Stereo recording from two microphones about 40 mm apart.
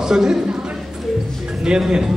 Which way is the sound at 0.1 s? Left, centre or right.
Centre.